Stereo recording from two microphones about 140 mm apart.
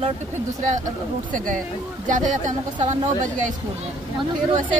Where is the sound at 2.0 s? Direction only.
65° right (ahead or behind).